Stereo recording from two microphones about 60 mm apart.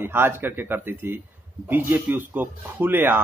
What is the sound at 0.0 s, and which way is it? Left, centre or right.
A man's voice, right.